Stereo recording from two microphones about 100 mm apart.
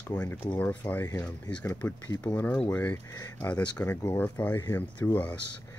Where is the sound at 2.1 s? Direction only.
40° left (ahead or behind).